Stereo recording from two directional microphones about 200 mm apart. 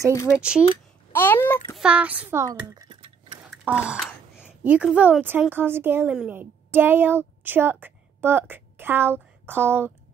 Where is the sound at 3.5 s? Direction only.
5° right (ahead or behind).